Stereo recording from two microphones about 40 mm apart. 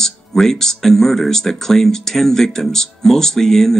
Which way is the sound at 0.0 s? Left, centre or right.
Centre.